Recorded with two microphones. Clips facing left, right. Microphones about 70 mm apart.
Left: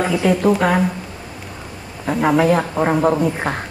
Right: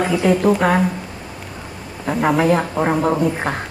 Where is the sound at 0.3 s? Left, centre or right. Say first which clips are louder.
Right 1 dB; centre.